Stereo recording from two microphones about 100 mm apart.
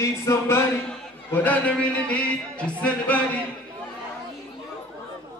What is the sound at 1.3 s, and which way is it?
Speech, 15° left (ahead or behind).